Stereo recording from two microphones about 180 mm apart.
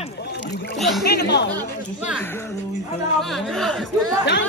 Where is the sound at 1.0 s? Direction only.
65° left (ahead or behind).